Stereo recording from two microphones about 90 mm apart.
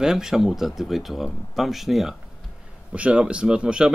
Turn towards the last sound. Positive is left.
turn(degrees=-10)  # may be behind; listen again after turning